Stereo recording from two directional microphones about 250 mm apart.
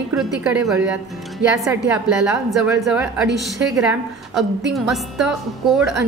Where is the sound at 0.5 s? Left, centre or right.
Centre.